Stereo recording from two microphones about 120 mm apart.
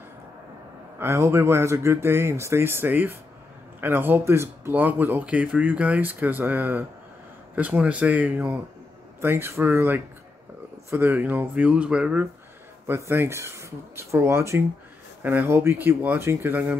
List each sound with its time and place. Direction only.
0.9 s speech: 20° right (ahead or behind)